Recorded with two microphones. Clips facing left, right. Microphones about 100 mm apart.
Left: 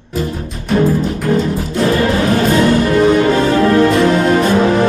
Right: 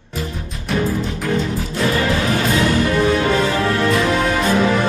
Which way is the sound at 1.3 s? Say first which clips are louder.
Left 5 dB; 35° left (ahead or behind).